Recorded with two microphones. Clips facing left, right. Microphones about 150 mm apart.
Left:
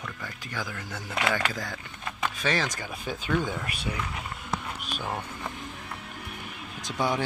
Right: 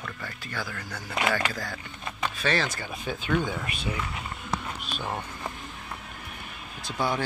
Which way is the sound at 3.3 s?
10° right (ahead or behind).